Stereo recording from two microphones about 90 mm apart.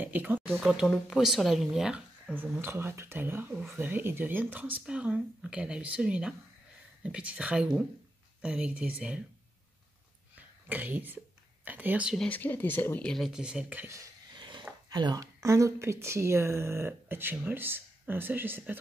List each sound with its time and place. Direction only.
0.0 s speech: 20° right (ahead or behind)
0.6 s speech: centre (ahead or behind)
2.3 s speech: 20° right (ahead or behind)
10.3 s a sound: 20° right (ahead or behind)
11.6 s speech: 20° right (ahead or behind)
12.3 s speech: 20° left (ahead or behind)
13.0 s speech: 5° left (ahead or behind)
13.3 s speech: 10° right (ahead or behind)
14.3 s a sound: 60° right (ahead or behind)
14.9 s speech: 50° right (ahead or behind)
15.4 s speech: 35° right (ahead or behind)